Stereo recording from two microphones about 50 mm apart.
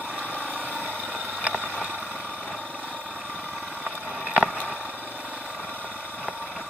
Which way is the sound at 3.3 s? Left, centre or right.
Left.